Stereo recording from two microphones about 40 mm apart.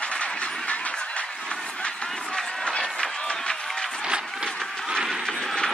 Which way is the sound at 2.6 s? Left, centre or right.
Left.